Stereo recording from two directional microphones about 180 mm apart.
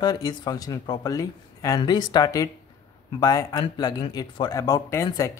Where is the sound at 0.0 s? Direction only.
20° left (ahead or behind).